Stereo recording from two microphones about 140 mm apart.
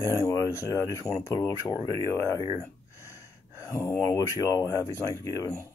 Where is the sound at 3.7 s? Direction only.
25° left (ahead or behind).